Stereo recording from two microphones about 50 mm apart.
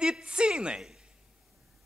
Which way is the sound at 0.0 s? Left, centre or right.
Centre.